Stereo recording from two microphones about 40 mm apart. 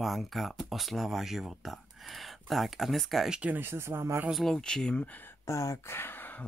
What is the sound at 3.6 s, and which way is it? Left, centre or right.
Speech, right.